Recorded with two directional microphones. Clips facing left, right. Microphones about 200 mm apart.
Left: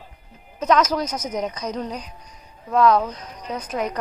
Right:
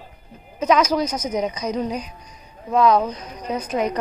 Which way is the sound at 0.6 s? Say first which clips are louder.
Right 1 dB; centre (ahead or behind).